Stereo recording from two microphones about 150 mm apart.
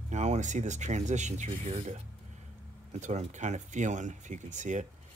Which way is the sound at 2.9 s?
50° right (ahead or behind).